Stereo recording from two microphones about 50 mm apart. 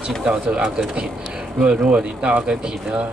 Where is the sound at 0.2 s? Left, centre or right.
Centre.